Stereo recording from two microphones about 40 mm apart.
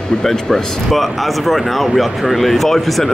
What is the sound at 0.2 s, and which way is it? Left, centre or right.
Speech, centre.